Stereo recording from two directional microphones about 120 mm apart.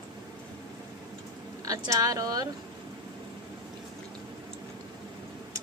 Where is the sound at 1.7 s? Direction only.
30° right (ahead or behind).